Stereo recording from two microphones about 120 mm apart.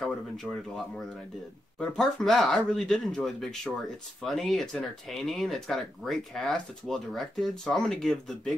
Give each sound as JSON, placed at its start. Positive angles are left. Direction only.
{"t": 0.0, "sound": "speech", "side_deg": 0}